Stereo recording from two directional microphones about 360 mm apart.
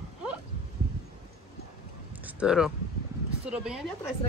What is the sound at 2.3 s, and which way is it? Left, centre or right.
Speech, centre.